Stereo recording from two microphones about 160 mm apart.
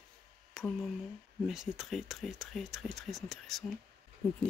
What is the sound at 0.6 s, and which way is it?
Speech, centre (ahead or behind).